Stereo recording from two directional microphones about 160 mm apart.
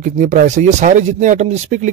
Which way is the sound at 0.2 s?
55° right (ahead or behind).